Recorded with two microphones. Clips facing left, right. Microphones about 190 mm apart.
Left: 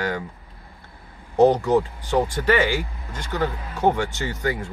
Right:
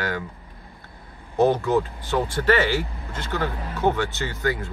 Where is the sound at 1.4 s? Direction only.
15° left (ahead or behind).